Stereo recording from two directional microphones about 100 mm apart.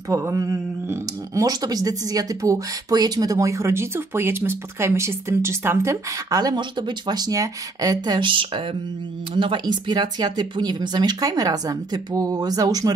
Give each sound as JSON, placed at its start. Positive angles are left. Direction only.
{"t": 0.1, "sound": "speech", "side_deg": -30}
{"t": 6.4, "sound": "speech", "side_deg": -50}